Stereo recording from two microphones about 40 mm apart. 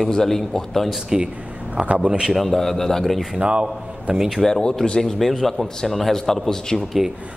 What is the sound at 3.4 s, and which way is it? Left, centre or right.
Speech, right.